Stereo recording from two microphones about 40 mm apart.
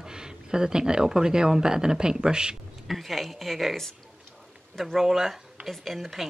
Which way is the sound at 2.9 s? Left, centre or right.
Centre.